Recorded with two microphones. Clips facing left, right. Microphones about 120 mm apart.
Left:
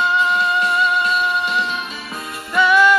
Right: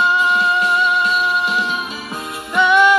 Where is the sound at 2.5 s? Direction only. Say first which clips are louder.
Right 1 dB; 20° right (ahead or behind).